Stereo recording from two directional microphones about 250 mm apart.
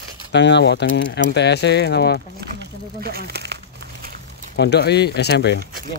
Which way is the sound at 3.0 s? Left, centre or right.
Right.